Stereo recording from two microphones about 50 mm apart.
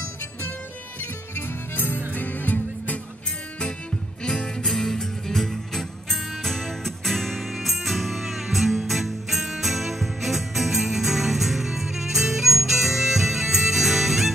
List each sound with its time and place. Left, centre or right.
1.3 s music: left
4.2 s music: centre